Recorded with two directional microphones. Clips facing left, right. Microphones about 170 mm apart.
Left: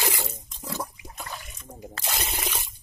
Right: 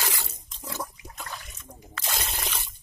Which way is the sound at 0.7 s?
10° left (ahead or behind).